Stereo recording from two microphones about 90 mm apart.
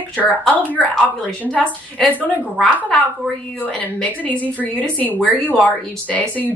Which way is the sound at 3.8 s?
20° left (ahead or behind).